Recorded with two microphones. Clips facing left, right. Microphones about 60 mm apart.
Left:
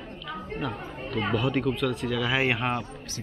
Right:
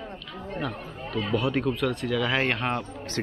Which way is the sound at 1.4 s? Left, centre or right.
Centre.